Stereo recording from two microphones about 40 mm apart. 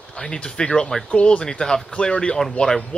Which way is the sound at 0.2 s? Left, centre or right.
Left.